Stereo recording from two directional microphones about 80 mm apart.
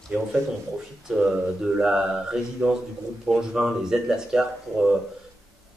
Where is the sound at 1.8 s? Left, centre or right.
Centre.